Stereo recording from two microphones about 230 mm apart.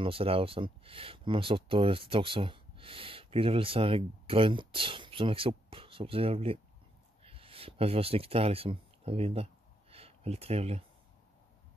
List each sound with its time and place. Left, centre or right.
0.0 s speech: right